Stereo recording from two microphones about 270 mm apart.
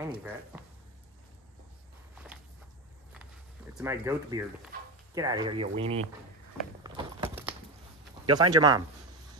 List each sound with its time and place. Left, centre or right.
0.0 s speech: centre
3.7 s speech: centre
6.8 s a sound: centre
8.3 s speech: centre